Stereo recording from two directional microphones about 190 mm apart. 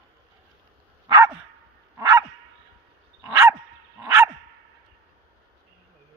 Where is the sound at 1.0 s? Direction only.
20° right (ahead or behind).